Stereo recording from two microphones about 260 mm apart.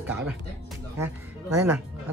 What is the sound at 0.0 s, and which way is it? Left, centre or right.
Speech, centre.